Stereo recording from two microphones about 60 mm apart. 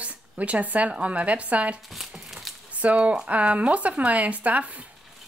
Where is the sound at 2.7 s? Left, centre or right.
Right.